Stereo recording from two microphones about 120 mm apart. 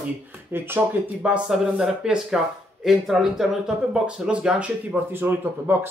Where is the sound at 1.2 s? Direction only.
5° right (ahead or behind).